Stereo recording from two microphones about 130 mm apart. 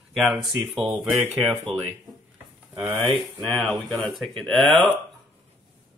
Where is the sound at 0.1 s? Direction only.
Centre (ahead or behind).